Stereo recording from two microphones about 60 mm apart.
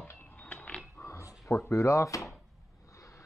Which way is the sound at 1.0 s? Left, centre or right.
Left.